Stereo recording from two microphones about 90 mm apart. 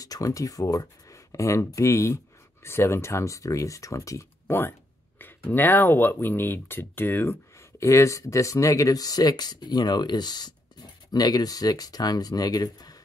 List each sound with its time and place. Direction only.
0.0 s speech: 40° left (ahead or behind)
4.5 s speech: 25° left (ahead or behind); by 12.9 s 45° left (ahead or behind)